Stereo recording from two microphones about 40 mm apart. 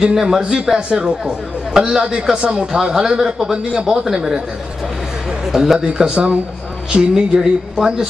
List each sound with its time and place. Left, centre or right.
0.0 s speech: centre
5.5 s speech: centre